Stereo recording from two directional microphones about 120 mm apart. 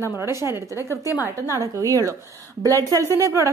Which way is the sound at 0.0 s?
25° right (ahead or behind).